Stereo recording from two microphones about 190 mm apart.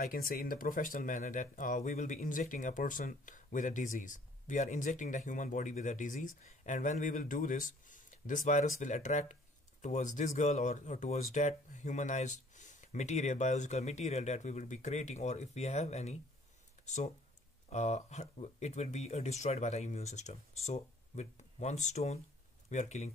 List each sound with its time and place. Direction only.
0.0 s speech: 50° left (ahead or behind)